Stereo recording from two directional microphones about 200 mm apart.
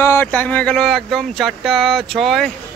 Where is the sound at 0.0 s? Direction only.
10° left (ahead or behind).